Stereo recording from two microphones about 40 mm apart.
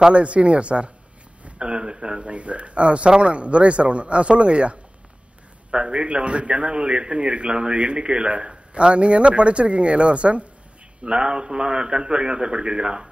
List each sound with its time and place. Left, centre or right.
0.1 s a man's voice: right